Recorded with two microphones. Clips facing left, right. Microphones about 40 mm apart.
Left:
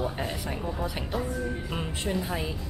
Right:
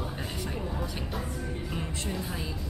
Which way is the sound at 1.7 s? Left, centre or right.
Left.